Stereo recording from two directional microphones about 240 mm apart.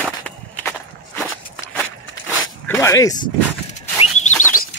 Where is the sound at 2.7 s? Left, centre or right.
Centre.